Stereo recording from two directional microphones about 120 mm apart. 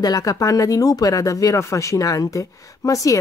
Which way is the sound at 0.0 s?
30° left (ahead or behind).